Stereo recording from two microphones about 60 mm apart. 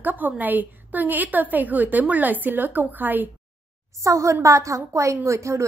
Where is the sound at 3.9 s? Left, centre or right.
Right.